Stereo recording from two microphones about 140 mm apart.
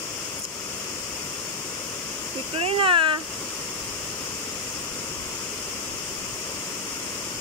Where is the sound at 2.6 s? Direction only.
40° right (ahead or behind).